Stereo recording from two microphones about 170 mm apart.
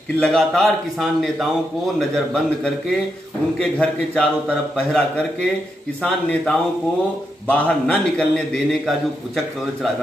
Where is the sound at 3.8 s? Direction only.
5° left (ahead or behind).